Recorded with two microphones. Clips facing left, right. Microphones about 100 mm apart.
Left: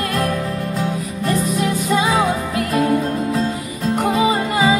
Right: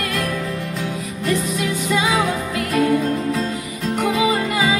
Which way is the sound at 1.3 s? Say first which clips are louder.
Left 2 dB; 40° left (ahead or behind).